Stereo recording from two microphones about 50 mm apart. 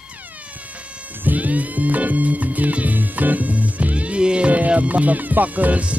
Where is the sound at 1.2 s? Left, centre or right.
Right.